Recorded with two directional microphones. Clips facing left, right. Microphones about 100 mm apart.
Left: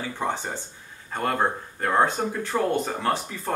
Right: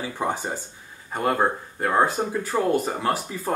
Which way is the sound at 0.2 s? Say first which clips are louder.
Right 2 dB; 10° right (ahead or behind).